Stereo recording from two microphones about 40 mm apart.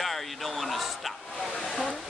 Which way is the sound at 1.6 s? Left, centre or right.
Centre.